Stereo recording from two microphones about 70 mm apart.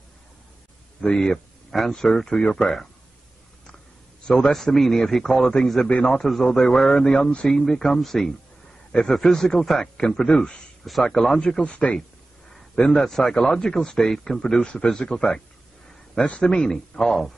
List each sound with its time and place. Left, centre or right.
1.0 s a man's voice: centre
4.3 s a man's voice: centre
16.7 s speech: centre